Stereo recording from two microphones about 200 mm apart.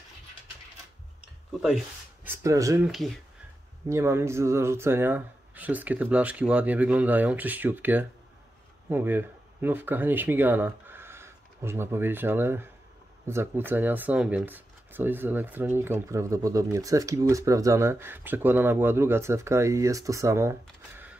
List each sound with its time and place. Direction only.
1.5 s speech: centre (ahead or behind)
2.2 s speech: 15° right (ahead or behind)
2.9 s speech: centre (ahead or behind)
3.9 s speech: 15° right (ahead or behind)